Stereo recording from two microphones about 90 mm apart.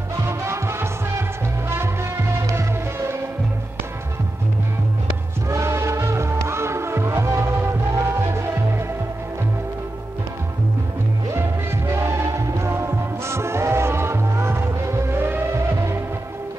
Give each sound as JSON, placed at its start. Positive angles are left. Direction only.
{"t": 0.2, "sound": "music", "side_deg": -30}
{"t": 5.5, "sound": "music", "side_deg": -30}
{"t": 11.9, "sound": "music", "side_deg": -30}